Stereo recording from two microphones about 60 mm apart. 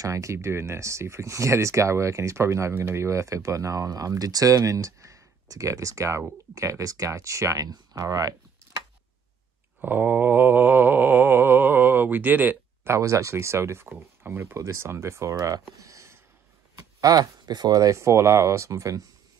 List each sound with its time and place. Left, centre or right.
0.0 s speech: right
2.7 s speech: right
3.1 s speech: right
9.8 s mantra: right
12.8 s speech: right
15.3 s speech: right
15.8 s a sound: right
17.0 s speech: right